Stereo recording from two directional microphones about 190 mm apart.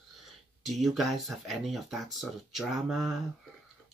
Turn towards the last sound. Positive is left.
turn(degrees=0)  # may be behind; listen again after turning